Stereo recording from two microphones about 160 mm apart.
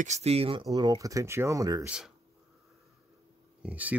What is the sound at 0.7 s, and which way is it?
Speech, 25° right (ahead or behind).